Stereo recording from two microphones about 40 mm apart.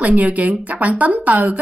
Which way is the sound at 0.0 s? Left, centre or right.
Right.